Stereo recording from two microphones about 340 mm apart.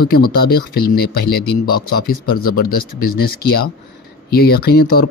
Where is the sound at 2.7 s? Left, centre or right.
Left.